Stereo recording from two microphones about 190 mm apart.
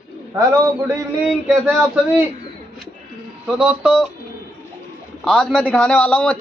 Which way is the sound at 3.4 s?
5° right (ahead or behind).